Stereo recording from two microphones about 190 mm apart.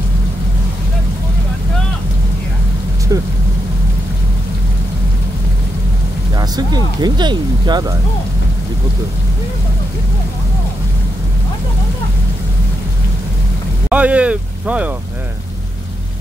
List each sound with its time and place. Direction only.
3.1 s speech: 20° right (ahead or behind)
6.3 s speech: 20° right (ahead or behind)
13.8 s speech: 5° right (ahead or behind)